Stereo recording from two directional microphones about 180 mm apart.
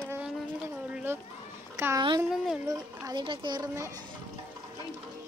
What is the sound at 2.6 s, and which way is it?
Speech, 20° right (ahead or behind).